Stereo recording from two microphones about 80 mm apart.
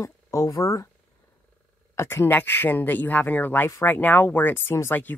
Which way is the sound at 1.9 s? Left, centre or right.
Left.